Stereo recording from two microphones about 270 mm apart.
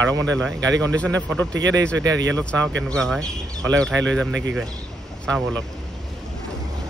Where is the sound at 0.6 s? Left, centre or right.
Right.